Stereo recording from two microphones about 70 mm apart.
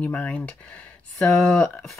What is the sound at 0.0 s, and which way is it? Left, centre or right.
Speech, centre.